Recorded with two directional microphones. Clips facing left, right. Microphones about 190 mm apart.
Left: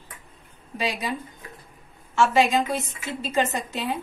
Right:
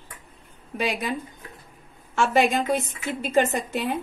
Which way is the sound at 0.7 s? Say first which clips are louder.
Right 2 dB; 55° right (ahead or behind).